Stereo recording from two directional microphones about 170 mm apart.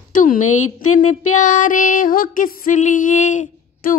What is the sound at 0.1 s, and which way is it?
Speech, 50° left (ahead or behind).